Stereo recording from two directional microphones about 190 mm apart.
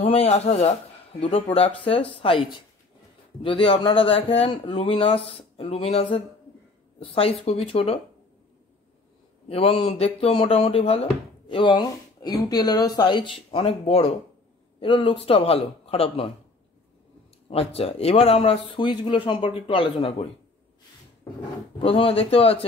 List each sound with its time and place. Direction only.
0.0 s speech: 30° left (ahead or behind)
3.4 s speech: 25° left (ahead or behind)
9.5 s speech: 30° left (ahead or behind)
17.5 s speech: 30° left (ahead or behind)
21.7 s speech: 30° left (ahead or behind)